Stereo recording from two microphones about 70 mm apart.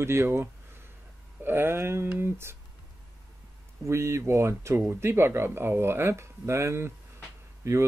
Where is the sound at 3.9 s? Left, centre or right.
Right.